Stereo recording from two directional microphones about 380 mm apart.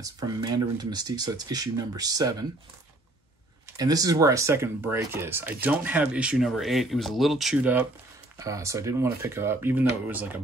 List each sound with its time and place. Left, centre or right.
0.0 s speech: centre
3.7 s speech: centre